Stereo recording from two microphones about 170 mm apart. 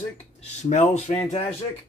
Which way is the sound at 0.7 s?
45° left (ahead or behind).